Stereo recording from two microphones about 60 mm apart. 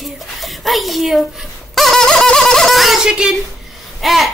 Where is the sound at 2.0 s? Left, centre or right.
Centre.